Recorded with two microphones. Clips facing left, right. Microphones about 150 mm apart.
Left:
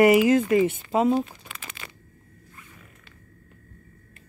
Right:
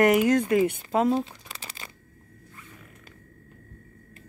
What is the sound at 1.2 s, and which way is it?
Crumpling, 30° right (ahead or behind).